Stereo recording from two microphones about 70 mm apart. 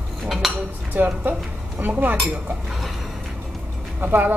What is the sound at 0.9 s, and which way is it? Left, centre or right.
A woman's voice, right.